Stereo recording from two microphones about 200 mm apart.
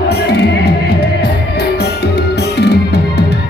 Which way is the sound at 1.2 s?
55° left (ahead or behind).